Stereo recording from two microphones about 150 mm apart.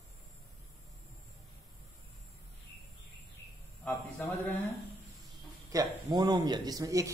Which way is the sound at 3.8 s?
10° left (ahead or behind).